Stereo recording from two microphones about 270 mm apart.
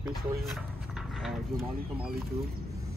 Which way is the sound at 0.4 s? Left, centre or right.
Centre.